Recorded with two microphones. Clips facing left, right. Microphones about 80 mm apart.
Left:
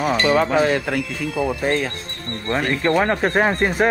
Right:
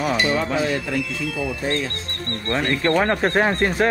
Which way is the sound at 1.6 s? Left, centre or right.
Left.